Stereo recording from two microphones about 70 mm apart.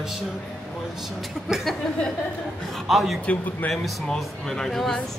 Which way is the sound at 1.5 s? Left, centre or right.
Centre.